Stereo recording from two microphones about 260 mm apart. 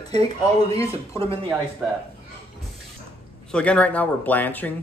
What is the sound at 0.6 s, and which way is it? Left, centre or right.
Speech, right.